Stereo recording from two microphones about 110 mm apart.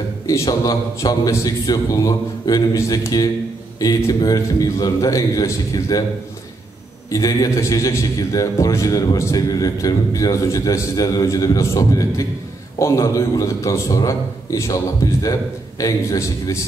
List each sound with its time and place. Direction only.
0.3 s a man's voice: 30° left (ahead or behind)
7.1 s a man's voice: 30° left (ahead or behind)